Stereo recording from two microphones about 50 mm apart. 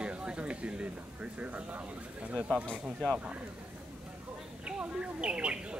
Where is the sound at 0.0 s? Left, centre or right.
Right.